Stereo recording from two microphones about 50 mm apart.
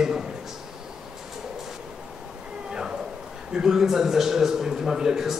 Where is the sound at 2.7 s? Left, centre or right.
Centre.